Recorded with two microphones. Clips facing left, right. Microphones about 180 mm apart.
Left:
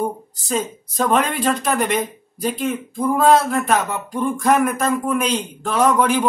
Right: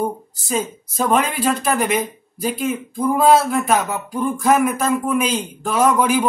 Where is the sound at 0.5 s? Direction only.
5° right (ahead or behind).